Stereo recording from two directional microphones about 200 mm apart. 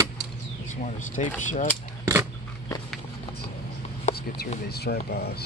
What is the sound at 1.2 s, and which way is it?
Speech, 35° left (ahead or behind).